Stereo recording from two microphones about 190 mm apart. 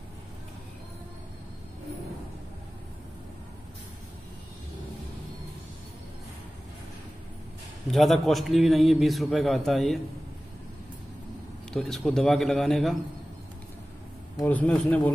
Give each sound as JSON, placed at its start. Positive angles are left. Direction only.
{"t": 7.9, "sound": "a man's voice", "side_deg": 0}
{"t": 11.7, "sound": "a man's voice", "side_deg": 0}
{"t": 14.4, "sound": "a man's voice", "side_deg": 10}